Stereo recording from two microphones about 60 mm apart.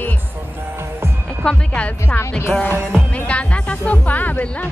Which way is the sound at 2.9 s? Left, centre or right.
Left.